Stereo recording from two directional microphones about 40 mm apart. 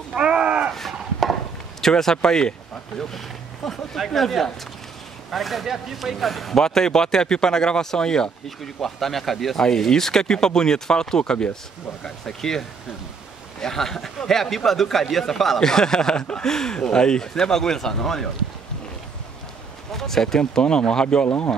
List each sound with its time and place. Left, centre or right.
0.1 s a sound: right
0.7 s a sound: centre
1.8 s speech: centre
6.6 s speech: centre
8.8 s speech: centre
19.9 s speech: centre
20.3 s speech: left